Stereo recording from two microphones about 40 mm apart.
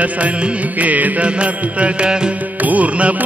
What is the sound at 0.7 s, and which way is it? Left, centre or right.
Music, right.